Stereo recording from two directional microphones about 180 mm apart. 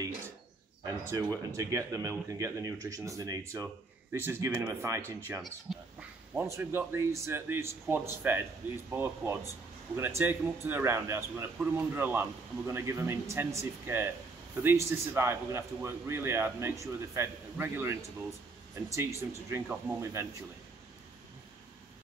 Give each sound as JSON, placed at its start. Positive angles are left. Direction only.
{"t": 0.8, "sound": "speech", "side_deg": -20}
{"t": 5.4, "sound": "a sound", "side_deg": 0}
{"t": 6.3, "sound": "speech", "side_deg": -15}